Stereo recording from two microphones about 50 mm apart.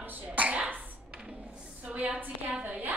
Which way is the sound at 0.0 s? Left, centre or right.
Right.